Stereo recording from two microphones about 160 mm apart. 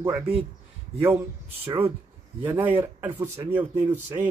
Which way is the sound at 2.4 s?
15° right (ahead or behind).